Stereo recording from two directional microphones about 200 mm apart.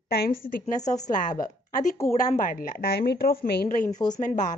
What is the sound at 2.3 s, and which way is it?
A woman's voice, 45° left (ahead or behind).